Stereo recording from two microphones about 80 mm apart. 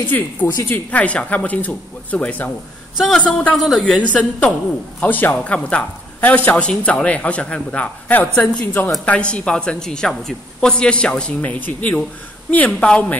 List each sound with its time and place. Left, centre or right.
0.0 s a woman's voice: left
3.1 s a man's voice: centre
4.1 s a woman's voice: centre